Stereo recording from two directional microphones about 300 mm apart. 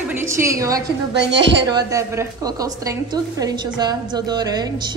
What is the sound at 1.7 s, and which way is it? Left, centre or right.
A woman's voice, centre.